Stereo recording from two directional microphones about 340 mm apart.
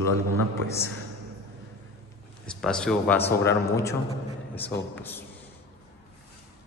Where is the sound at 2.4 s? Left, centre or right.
Centre.